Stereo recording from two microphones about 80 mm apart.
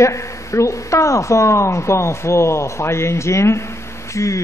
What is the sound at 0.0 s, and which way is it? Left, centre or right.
Speech, left.